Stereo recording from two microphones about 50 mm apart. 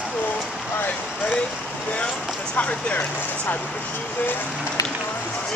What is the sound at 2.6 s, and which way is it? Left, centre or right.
Speech, left.